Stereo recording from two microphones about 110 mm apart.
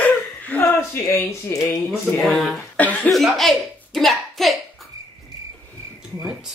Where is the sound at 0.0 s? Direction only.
15° left (ahead or behind).